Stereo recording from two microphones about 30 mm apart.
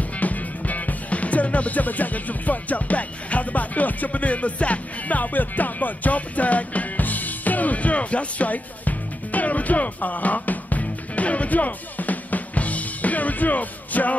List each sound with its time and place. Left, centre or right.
0.2 s music: left